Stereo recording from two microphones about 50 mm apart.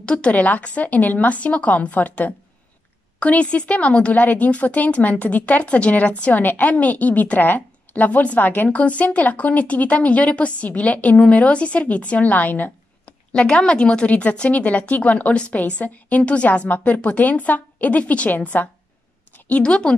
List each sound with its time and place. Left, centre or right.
0.0 s a woman's voice: left
13.3 s a woman's voice: centre
19.6 s a woman's voice: centre